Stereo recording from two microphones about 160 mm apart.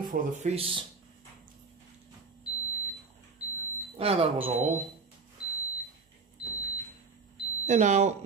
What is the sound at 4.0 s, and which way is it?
Speech, 35° right (ahead or behind).